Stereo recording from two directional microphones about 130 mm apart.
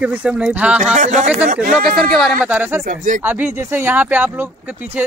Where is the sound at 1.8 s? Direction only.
Centre (ahead or behind).